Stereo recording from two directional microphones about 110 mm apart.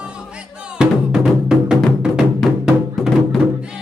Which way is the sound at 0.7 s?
5° right (ahead or behind).